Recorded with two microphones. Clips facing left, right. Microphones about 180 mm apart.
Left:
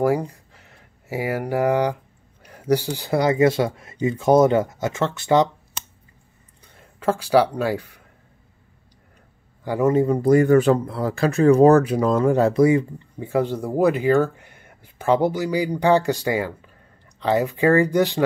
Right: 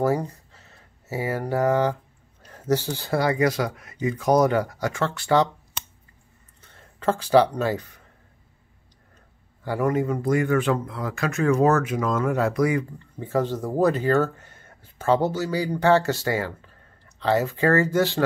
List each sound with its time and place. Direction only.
0.0 s speech: 10° left (ahead or behind)
6.6 s speech: 10° left (ahead or behind)
9.7 s speech: 20° left (ahead or behind)
13.2 s speech: 10° left (ahead or behind)